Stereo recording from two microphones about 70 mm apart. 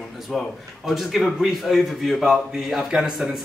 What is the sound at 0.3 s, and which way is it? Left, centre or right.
A man's voice, centre.